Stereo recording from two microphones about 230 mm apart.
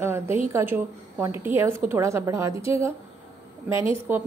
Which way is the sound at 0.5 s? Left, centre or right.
Centre.